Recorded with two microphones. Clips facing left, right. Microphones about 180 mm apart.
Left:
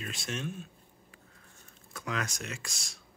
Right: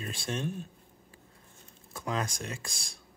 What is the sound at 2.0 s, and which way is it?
Speech, 30° right (ahead or behind).